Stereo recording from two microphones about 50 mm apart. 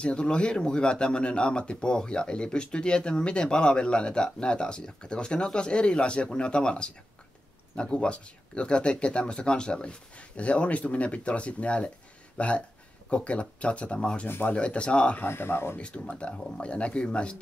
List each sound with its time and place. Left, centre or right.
0.0 s speech: centre
14.2 s speech: left
14.5 s speech: left
15.2 s speech: left
15.8 s speech: left